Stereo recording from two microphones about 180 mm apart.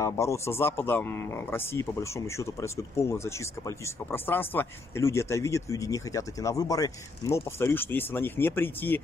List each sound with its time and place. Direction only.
0.0 s speech: 15° left (ahead or behind)